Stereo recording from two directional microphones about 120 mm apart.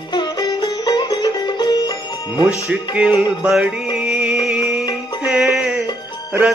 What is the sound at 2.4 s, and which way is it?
Music, 10° right (ahead or behind).